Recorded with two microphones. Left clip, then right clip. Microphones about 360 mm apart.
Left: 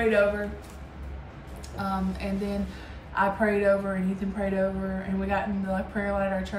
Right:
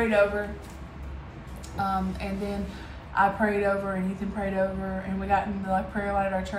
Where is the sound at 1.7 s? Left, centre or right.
Centre.